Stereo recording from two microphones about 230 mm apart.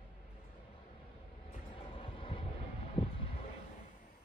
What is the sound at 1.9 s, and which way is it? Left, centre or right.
Train, left.